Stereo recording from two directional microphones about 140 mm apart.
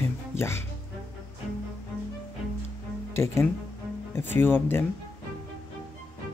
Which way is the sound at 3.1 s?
20° left (ahead or behind).